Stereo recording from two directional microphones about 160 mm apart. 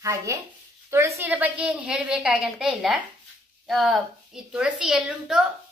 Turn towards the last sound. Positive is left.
turn(degrees=-5)  # may be behind; listen again after turning